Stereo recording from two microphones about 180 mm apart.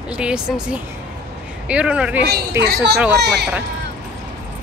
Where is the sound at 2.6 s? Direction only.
65° right (ahead or behind).